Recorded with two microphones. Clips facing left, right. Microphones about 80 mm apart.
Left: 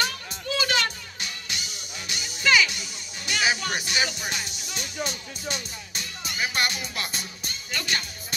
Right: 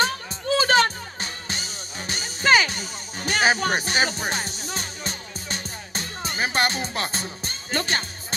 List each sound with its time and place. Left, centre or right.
0.0 s music: right